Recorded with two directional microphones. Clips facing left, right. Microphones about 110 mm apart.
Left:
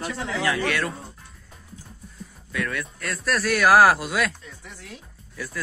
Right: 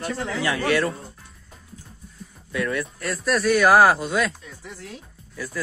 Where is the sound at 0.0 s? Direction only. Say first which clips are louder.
Right 2 dB; 45° right (ahead or behind).